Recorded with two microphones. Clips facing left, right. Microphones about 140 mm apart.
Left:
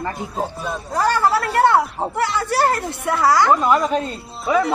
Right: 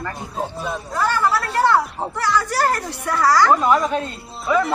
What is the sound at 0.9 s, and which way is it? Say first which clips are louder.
Speech: left 2 dB; 35° left (ahead or behind).